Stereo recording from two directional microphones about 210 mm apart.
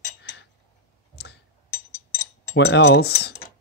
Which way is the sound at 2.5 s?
55° left (ahead or behind).